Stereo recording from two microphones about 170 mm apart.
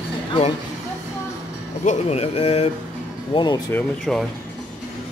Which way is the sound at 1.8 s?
40° left (ahead or behind).